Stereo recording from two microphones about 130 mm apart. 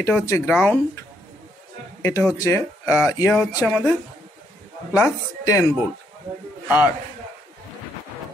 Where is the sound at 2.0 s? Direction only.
25° left (ahead or behind).